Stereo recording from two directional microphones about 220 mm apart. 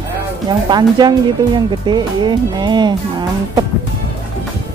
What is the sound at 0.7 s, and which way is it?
Speech, 20° right (ahead or behind).